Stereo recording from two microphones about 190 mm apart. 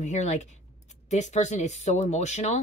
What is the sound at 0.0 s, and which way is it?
Speech, 40° left (ahead or behind).